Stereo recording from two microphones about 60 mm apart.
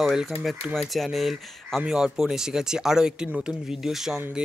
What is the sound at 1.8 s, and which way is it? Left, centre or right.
Speech, centre.